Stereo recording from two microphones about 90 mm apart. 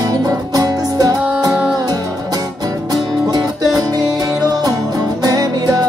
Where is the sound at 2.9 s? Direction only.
45° right (ahead or behind).